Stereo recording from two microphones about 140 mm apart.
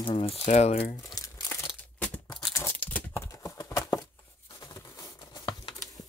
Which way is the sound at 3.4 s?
25° left (ahead or behind).